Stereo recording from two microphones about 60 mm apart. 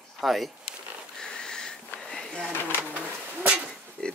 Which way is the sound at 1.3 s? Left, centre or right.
Centre.